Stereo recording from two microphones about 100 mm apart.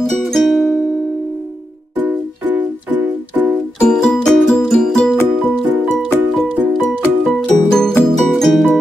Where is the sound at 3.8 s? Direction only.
5° left (ahead or behind).